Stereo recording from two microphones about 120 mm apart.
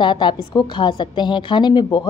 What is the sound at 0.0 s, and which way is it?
A woman's voice, 40° left (ahead or behind).